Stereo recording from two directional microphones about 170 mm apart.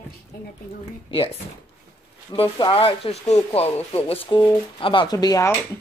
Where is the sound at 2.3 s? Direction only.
30° left (ahead or behind).